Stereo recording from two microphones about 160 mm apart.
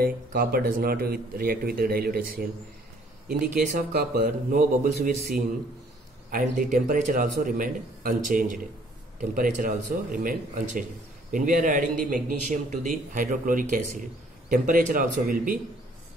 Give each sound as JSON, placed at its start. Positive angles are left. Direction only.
{"t": 0.0, "sound": "speech", "side_deg": -65}
{"t": 3.6, "sound": "speech", "side_deg": -65}
{"t": 6.3, "sound": "speech", "side_deg": -55}